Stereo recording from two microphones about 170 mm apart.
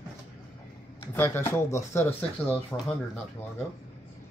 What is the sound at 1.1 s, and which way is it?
Speech, 15° left (ahead or behind).